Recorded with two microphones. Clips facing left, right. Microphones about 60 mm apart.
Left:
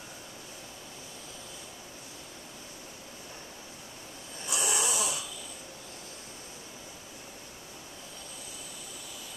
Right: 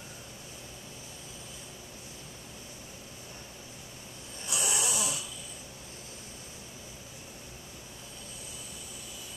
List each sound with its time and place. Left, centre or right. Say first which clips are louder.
4.5 s snoring: left 2 dB; left